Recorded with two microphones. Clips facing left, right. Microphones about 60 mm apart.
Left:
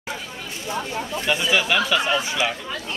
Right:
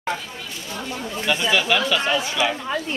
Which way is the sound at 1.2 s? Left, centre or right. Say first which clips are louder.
Right 1 dB; centre.